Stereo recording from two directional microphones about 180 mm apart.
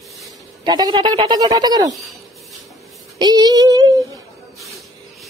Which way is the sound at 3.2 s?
20° right (ahead or behind).